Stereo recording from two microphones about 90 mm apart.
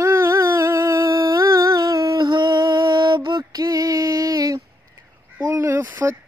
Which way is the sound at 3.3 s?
40° right (ahead or behind).